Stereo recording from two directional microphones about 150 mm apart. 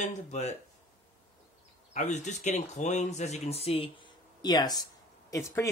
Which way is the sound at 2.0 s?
55° left (ahead or behind).